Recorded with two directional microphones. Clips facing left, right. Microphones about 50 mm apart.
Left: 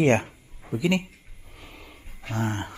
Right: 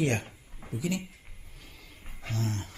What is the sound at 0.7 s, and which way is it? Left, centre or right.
Speech, left.